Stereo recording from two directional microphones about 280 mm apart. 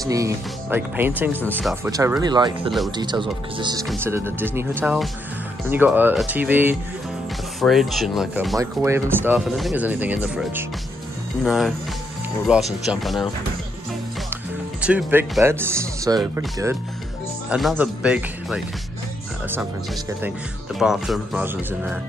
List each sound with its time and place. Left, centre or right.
0.1 s speech: centre
1.9 s speech: centre
3.8 s speech: centre
14.3 s speech: centre
20.1 s speech: centre